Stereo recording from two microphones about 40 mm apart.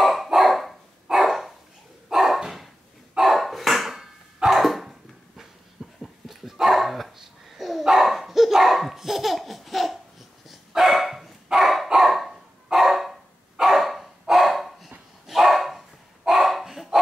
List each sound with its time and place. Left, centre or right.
0.0 s dog: centre
4.5 s cough: centre
5.8 s a sound: right
6.2 s dog: centre